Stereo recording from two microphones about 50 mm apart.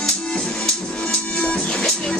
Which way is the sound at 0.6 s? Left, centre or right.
Centre.